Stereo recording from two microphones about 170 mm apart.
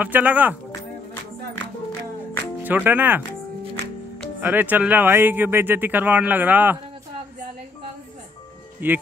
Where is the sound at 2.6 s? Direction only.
10° right (ahead or behind).